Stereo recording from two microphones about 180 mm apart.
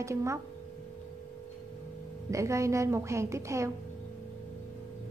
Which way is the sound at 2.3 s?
15° right (ahead or behind).